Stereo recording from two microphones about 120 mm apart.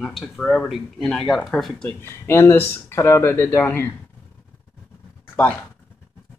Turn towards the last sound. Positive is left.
turn(degrees=15)  # may be behind; listen again after turning